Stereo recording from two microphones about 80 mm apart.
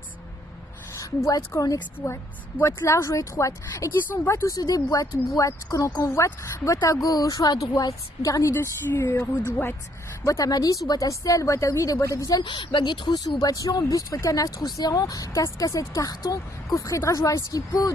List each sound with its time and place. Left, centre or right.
0.9 s a woman's voice: left
2.0 s a woman's voice: left
2.6 s speech: left
4.6 s speech: left
10.2 s speech: left
12.4 s speech: left
13.4 s speech: left
16.6 s speech: left